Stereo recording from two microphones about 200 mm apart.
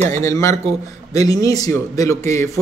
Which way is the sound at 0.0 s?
15° left (ahead or behind).